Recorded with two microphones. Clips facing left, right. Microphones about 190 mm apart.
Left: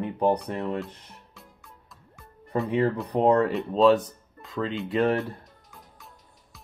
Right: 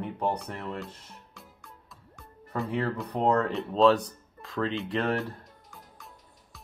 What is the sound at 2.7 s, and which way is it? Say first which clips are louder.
Speech: left 6 dB; 15° left (ahead or behind).